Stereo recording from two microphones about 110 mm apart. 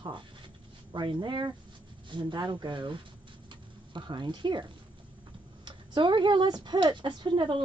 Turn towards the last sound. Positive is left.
turn(degrees=-45)  # may be behind; listen again after turning